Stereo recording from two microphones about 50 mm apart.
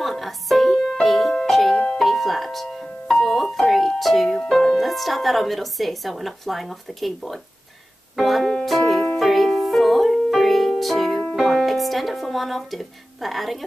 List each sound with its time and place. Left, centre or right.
0.0 s music: centre